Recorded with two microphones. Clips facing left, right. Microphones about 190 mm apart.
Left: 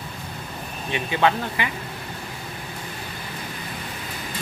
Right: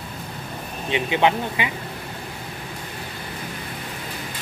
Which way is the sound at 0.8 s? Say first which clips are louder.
Right 2 dB; 20° right (ahead or behind).